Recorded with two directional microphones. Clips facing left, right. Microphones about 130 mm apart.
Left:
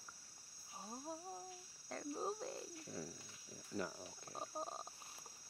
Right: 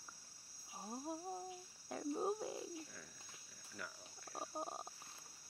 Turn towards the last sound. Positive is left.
turn(degrees=-5)  # may be behind; listen again after turning